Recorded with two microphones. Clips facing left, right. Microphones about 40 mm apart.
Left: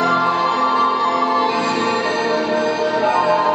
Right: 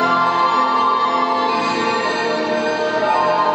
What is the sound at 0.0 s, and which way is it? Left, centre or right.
Music, centre.